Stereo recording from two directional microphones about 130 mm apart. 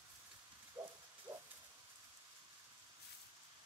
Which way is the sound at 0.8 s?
20° right (ahead or behind).